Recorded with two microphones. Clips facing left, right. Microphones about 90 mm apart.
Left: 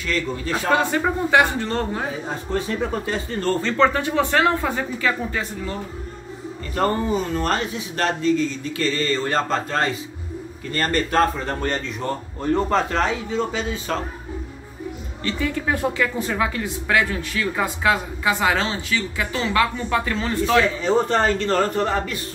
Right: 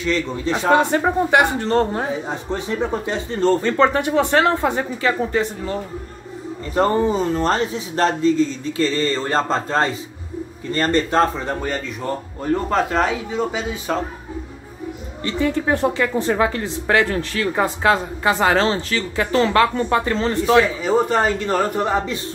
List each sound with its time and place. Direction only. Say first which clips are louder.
0.0 s speech: right 4 dB; 20° right (ahead or behind)
6.7 s speech: right 4 dB; 25° right (ahead or behind)
11.6 s a man's voice: even; 5° right (ahead or behind)
15.2 s speech: right 4 dB; 25° right (ahead or behind)
20.4 s a man's voice: right 2 dB; 15° right (ahead or behind)